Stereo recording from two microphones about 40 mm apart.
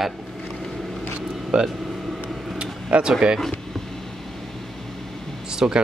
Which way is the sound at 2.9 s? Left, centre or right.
Right.